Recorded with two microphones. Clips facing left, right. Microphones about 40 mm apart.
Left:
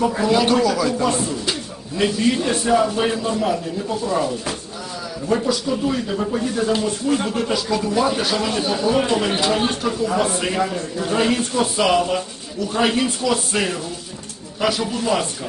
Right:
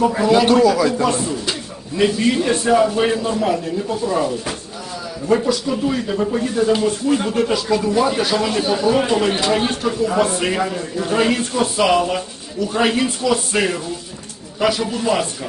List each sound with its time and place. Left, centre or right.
0.2 s speech: centre
1.0 s speech: centre